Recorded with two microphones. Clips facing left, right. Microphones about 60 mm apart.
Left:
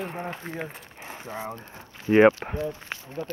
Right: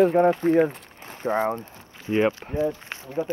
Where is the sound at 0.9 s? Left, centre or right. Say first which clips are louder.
Left 1 dB; centre.